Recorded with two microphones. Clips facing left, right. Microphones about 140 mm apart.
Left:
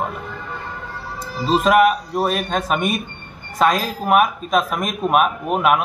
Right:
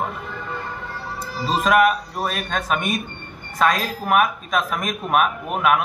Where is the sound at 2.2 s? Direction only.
35° left (ahead or behind).